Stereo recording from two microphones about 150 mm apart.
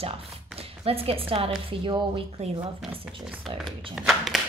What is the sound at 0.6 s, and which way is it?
A woman's voice, 40° right (ahead or behind).